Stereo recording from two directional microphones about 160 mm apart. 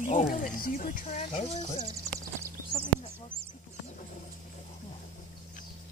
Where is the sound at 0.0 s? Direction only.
55° left (ahead or behind).